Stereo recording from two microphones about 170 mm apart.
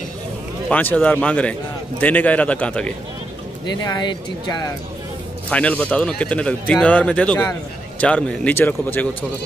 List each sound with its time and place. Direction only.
0.7 s a man's voice: 10° left (ahead or behind)
3.6 s speech: 25° left (ahead or behind)
5.5 s a man's voice: 5° left (ahead or behind)